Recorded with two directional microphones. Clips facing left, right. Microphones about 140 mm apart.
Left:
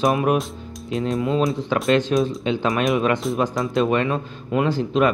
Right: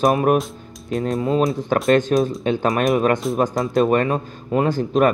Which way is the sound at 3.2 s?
Centre (ahead or behind).